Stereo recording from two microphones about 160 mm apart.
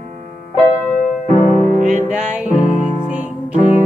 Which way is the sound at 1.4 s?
45° left (ahead or behind).